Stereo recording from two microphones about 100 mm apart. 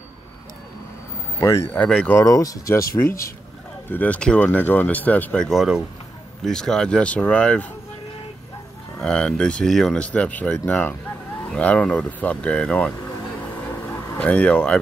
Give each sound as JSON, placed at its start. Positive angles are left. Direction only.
{"t": 1.4, "sound": "speech", "side_deg": 30}
{"t": 1.7, "sound": "speech", "side_deg": 10}
{"t": 2.0, "sound": "speech", "side_deg": 30}
{"t": 5.5, "sound": "speech", "side_deg": 0}
{"t": 9.0, "sound": "speech", "side_deg": 10}
{"t": 13.8, "sound": "a sound", "side_deg": 15}